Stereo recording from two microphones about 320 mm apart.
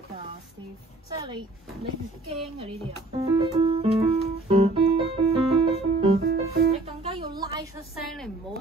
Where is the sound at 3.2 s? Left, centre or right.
Centre.